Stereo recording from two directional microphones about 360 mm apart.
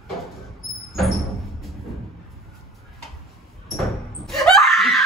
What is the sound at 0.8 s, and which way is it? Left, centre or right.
Music, centre.